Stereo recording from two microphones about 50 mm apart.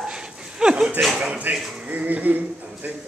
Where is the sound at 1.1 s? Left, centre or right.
Right.